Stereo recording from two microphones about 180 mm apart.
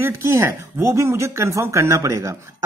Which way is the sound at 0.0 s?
15° right (ahead or behind).